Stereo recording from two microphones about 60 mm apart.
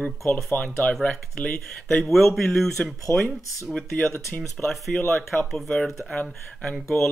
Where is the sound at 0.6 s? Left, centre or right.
Centre.